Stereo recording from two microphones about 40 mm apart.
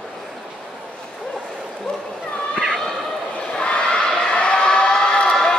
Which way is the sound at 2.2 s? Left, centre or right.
Left.